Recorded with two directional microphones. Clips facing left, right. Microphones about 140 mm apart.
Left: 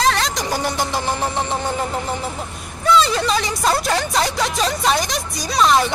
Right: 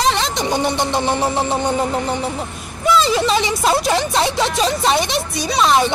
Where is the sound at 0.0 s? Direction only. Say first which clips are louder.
Right 1 dB; centre (ahead or behind).